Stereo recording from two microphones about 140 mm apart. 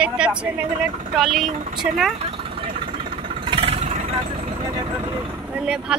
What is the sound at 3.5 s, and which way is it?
Vehicle, 45° right (ahead or behind).